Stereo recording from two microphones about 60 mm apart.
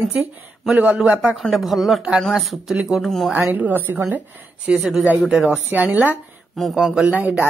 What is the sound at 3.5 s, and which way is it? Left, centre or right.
Speech, right.